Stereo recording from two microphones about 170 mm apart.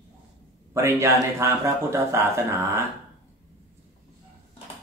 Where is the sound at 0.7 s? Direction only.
15° right (ahead or behind).